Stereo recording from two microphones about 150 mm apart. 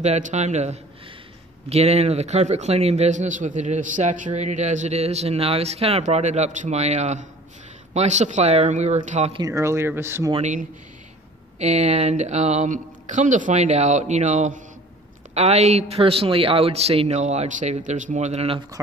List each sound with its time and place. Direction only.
0.0 s a man's voice: 50° right (ahead or behind)
9.4 s speech: 20° right (ahead or behind)
10.3 s a man's voice: 55° right (ahead or behind)